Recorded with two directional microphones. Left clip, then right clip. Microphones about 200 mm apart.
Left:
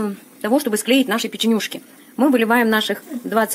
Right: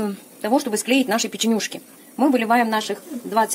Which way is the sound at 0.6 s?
10° right (ahead or behind).